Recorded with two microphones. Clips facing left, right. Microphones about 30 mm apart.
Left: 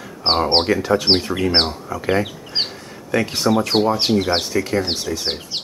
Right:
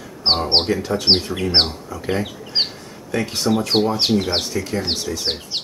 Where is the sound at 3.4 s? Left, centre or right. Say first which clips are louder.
Left 2 dB; left.